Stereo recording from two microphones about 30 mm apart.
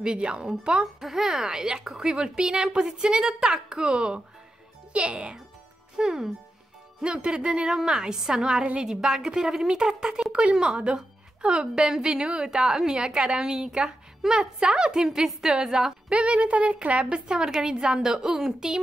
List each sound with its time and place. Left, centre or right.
0.0 s speech: right
1.0 s a woman's voice: centre
1.4 s a woman's voice: right
5.9 s speech: centre
7.0 s a woman's voice: right
16.1 s a woman's voice: right
17.5 s a woman's voice: right